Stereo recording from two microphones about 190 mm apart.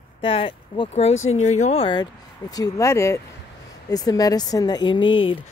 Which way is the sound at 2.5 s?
15° left (ahead or behind).